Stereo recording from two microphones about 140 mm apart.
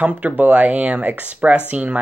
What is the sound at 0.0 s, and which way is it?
Speech, 10° right (ahead or behind).